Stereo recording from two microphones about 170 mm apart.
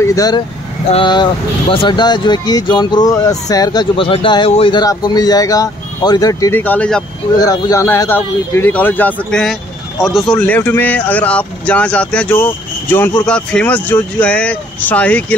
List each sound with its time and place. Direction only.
0.0 s speech: 20° left (ahead or behind)
6.6 s speech: 10° left (ahead or behind)
7.3 s speech: 20° left (ahead or behind)